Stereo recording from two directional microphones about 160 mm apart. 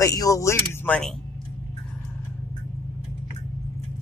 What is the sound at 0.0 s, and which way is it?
Speech, 20° left (ahead or behind).